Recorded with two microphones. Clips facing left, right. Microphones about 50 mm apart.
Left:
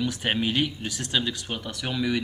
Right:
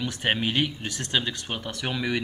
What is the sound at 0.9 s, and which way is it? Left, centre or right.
A man's voice, right.